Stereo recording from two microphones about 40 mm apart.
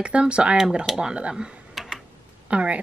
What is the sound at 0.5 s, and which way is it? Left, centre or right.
Speech, centre.